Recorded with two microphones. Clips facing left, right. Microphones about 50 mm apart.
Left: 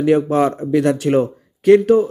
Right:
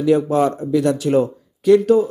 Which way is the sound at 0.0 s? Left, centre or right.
Left.